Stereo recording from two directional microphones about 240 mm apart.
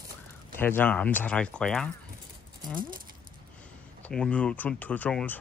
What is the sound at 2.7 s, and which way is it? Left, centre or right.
Speech, right.